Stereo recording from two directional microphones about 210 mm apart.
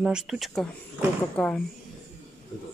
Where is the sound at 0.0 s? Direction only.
5° right (ahead or behind).